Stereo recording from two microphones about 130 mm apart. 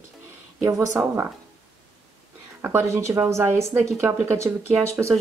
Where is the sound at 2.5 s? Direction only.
20° right (ahead or behind).